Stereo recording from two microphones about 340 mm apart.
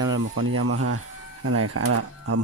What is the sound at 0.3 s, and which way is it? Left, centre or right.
Speech, right.